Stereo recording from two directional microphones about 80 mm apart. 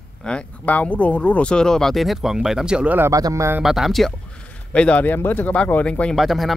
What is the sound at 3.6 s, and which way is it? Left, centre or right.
Speech, centre.